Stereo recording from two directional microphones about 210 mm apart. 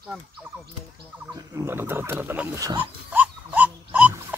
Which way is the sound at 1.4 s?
15° right (ahead or behind).